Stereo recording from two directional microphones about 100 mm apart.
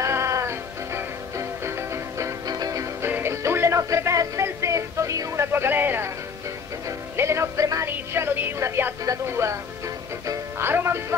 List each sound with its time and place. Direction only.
0.0 s music: 30° right (ahead or behind)
7.2 s music: 30° right (ahead or behind)
7.9 s speech: 20° right (ahead or behind)
10.2 s music: 35° right (ahead or behind)
10.7 s speech: 25° right (ahead or behind)